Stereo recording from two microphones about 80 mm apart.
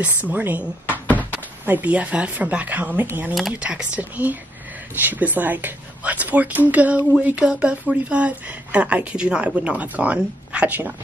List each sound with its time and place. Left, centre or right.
0.0 s speech: centre